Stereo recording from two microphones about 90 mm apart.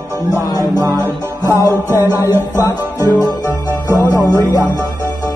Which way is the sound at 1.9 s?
25° right (ahead or behind).